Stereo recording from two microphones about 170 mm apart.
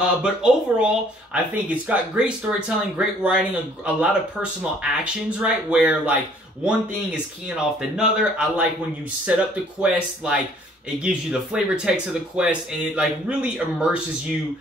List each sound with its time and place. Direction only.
0.0 s speech: 5° right (ahead or behind)